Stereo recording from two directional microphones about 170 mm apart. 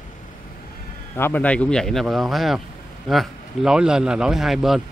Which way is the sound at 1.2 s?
10° left (ahead or behind).